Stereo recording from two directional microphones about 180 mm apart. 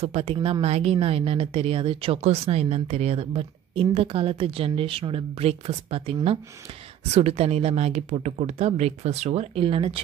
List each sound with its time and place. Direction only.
0.0 s speech: 35° right (ahead or behind)